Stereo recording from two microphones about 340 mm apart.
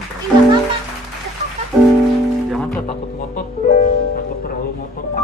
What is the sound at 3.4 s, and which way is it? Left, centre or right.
Music, left.